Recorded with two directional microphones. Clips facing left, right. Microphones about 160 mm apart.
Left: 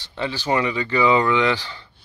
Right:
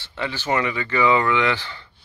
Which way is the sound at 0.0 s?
15° left (ahead or behind).